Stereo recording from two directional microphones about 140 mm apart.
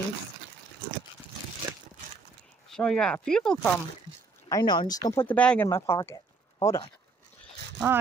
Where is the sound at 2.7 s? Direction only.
5° left (ahead or behind).